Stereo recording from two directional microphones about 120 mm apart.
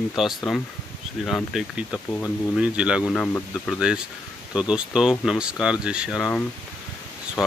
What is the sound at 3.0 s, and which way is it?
Speech, 10° left (ahead or behind).